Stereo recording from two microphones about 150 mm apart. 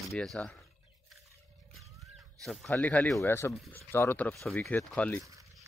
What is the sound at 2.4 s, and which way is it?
Speech, centre (ahead or behind).